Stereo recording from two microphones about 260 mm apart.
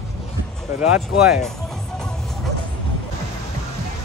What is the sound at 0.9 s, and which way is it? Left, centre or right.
Speech, centre.